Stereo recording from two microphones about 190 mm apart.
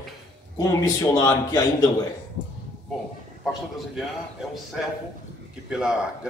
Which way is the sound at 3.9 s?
Centre (ahead or behind).